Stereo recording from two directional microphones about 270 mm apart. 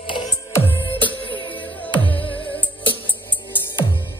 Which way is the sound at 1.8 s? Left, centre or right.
Centre.